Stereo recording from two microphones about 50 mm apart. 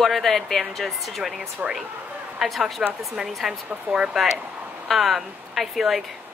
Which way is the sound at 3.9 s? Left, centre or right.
Right.